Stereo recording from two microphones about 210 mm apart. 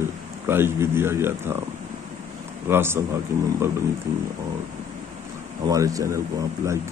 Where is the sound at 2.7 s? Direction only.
10° right (ahead or behind).